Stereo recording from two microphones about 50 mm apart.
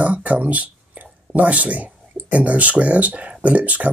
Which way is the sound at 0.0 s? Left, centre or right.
Right.